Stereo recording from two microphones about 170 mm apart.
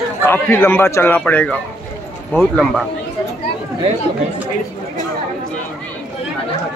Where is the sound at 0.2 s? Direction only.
10° left (ahead or behind).